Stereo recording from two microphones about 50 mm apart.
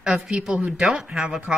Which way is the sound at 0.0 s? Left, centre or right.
Centre.